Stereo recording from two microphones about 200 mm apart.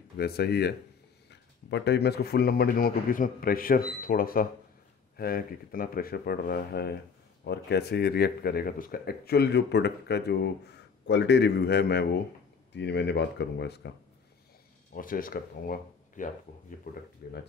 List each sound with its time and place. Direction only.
0.2 s speech: 55° left (ahead or behind)
15.0 s speech: 45° left (ahead or behind)